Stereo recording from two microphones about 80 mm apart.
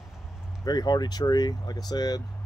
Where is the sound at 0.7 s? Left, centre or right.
Left.